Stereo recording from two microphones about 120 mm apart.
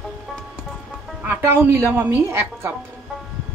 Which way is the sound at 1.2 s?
15° right (ahead or behind).